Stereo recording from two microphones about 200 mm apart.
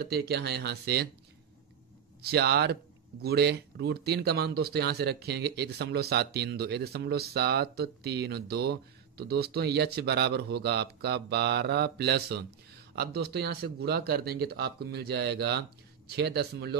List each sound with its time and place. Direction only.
0.0 s speech: 55° right (ahead or behind)
2.2 s speech: 55° right (ahead or behind)